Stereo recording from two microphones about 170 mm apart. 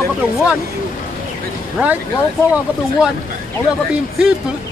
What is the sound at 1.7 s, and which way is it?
Speech, 10° right (ahead or behind).